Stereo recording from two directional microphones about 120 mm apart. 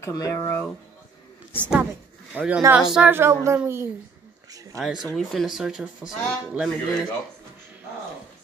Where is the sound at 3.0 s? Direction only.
20° right (ahead or behind).